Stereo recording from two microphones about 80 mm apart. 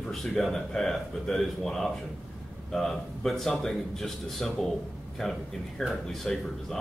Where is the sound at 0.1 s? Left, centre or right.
Centre.